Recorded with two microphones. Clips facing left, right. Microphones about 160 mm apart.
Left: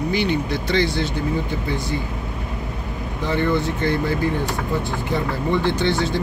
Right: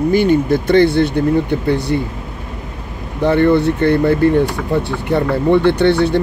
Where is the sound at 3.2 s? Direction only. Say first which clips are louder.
Right 9 dB; 60° right (ahead or behind).